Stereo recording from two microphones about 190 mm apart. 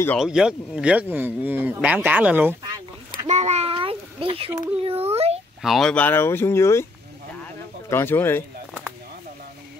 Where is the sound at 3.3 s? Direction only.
35° right (ahead or behind).